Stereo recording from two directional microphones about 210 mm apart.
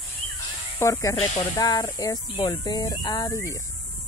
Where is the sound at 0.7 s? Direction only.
15° left (ahead or behind).